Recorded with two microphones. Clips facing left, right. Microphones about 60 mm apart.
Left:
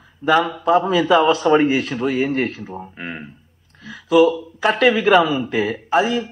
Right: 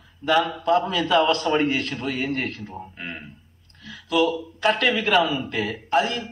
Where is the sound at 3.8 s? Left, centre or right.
Centre.